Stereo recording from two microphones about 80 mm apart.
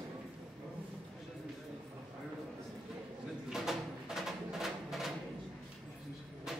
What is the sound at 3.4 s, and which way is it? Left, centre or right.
Music, centre.